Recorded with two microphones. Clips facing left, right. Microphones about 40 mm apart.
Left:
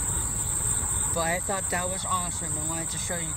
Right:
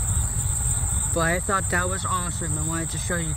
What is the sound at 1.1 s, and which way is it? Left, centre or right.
Speech, right.